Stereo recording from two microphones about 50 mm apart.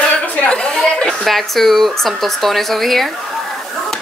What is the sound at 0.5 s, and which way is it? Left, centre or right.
Chatter, centre.